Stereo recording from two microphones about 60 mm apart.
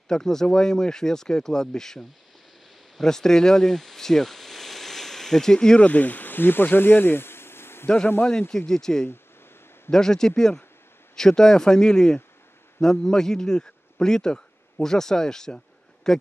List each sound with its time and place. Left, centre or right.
0.1 s speech: centre
3.0 s speech: centre
5.9 s speech: left
8.3 s a man's voice: centre